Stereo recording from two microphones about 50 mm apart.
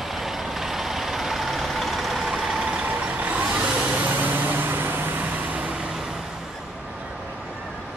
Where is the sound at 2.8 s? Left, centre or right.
Right.